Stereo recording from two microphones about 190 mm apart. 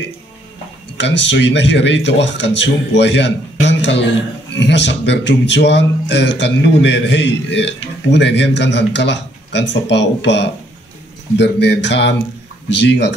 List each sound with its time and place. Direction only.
0.9 s a man's voice: 70° left (ahead or behind)